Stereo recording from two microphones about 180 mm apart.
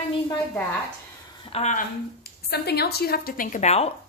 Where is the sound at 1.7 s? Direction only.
60° left (ahead or behind); by 3.9 s 40° left (ahead or behind).